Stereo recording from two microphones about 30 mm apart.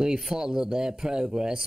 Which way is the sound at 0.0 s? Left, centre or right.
Right.